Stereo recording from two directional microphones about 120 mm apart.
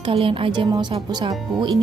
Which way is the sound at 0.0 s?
50° right (ahead or behind).